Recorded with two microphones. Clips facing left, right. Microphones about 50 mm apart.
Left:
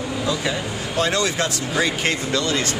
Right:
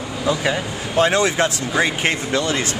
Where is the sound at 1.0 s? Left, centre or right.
Right.